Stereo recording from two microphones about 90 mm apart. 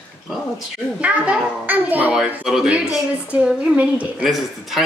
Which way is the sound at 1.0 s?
15° right (ahead or behind).